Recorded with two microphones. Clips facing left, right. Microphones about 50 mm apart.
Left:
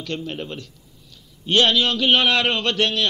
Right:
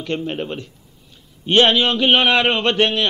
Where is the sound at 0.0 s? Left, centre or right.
Right.